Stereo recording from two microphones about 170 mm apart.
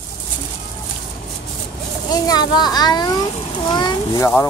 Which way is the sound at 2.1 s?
20° left (ahead or behind).